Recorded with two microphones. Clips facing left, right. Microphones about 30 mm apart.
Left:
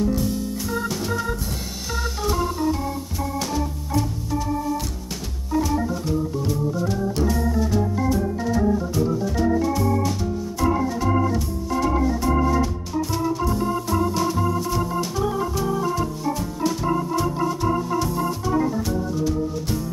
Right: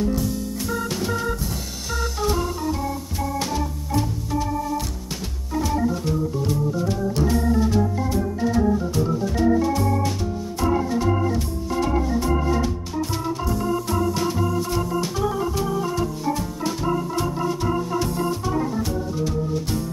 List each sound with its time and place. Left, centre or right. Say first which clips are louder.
7.2 s organ: right 2 dB; centre
14.1 s organ: left 1 dB; centre